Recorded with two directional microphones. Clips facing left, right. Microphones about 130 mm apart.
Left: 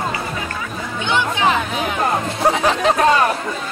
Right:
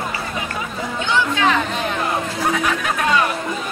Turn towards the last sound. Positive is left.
turn(degrees=35)  # may be behind; listen again after turning